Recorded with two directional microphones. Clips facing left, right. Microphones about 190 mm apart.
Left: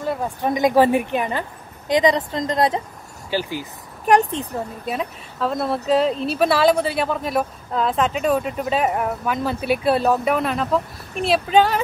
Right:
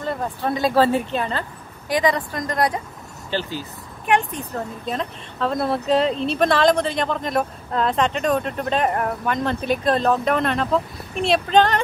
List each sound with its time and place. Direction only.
0.0 s a woman's voice: 10° left (ahead or behind)
3.3 s speech: 10° left (ahead or behind)
4.0 s speech: 40° left (ahead or behind)
4.6 s speech: 10° left (ahead or behind)